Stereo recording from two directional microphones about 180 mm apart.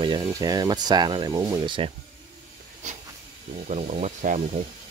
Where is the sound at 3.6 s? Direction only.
40° right (ahead or behind).